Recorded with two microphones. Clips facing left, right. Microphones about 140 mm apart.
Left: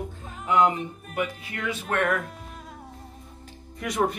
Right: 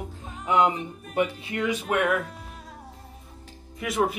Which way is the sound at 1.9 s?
10° right (ahead or behind).